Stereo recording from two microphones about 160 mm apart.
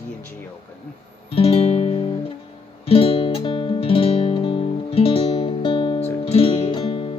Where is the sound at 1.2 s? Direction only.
35° left (ahead or behind).